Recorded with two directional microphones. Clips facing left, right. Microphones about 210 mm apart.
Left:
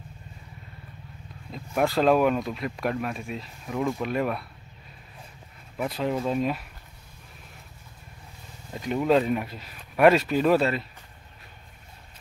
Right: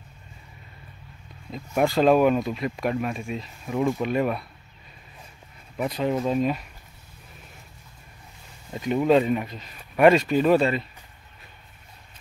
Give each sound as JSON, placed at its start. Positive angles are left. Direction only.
{"t": 1.5, "sound": "speech", "side_deg": 0}
{"t": 5.8, "sound": "speech", "side_deg": 0}
{"t": 8.7, "sound": "speech", "side_deg": 0}